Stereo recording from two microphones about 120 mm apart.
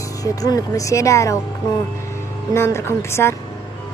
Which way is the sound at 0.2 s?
30° left (ahead or behind).